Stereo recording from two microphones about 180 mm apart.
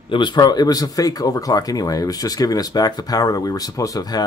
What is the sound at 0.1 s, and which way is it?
Speech, 25° left (ahead or behind).